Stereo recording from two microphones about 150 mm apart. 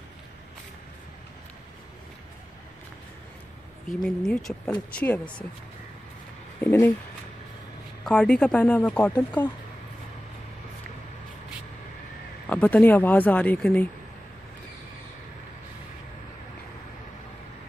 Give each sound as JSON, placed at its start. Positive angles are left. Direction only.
{"t": 4.0, "sound": "speech", "side_deg": 5}
{"t": 6.6, "sound": "speech", "side_deg": 15}
{"t": 8.0, "sound": "speech", "side_deg": 5}
{"t": 12.4, "sound": "speech", "side_deg": 10}